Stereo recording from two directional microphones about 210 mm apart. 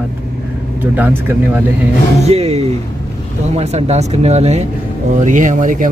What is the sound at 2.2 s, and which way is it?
Speech, 30° right (ahead or behind).